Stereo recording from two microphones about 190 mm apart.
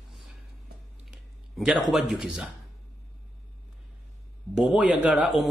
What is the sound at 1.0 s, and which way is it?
Speech, centre (ahead or behind).